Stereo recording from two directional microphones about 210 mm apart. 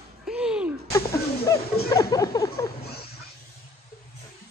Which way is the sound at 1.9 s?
15° left (ahead or behind).